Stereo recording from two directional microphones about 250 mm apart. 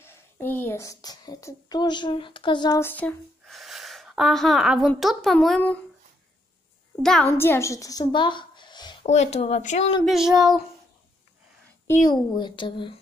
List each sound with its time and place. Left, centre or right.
0.0 s speech: centre
7.0 s a woman's voice: centre; by 10.0 s left
10.0 s a woman's voice: centre
12.1 s speech: centre